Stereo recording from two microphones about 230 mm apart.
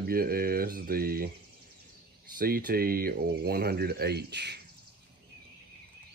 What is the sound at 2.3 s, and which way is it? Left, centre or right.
Speech, right.